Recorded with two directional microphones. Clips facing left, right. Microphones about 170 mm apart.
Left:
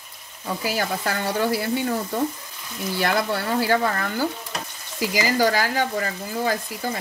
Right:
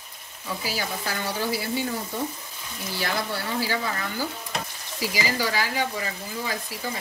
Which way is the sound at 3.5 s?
55° left (ahead or behind).